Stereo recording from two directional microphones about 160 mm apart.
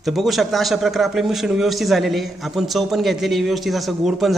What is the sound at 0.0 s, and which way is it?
A man's voice, centre (ahead or behind).